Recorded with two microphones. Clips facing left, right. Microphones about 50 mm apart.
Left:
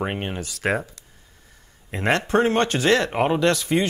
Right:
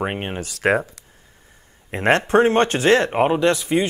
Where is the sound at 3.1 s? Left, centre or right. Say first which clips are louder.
Right 2 dB; centre.